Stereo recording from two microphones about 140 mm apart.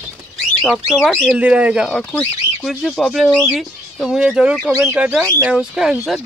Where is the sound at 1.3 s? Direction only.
10° right (ahead or behind).